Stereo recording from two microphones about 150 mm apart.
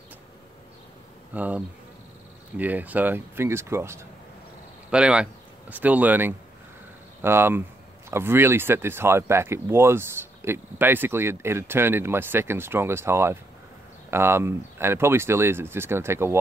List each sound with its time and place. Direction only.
1.3 s insect: 10° right (ahead or behind)
2.5 s speech: 10° right (ahead or behind)
4.9 s speech: 5° right (ahead or behind)